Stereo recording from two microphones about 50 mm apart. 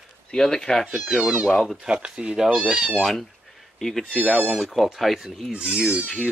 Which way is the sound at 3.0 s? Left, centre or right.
Centre.